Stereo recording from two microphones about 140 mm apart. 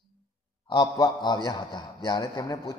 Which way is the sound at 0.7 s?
30° left (ahead or behind).